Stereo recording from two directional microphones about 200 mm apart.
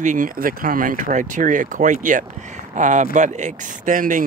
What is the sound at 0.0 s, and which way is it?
Speech, 40° right (ahead or behind).